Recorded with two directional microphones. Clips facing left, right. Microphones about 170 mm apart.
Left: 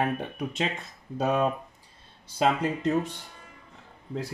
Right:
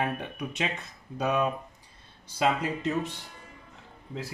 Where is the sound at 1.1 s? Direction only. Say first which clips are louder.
Left 2 dB; 30° left (ahead or behind).